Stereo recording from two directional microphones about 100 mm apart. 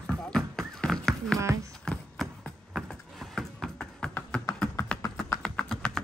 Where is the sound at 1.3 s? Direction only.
35° right (ahead or behind).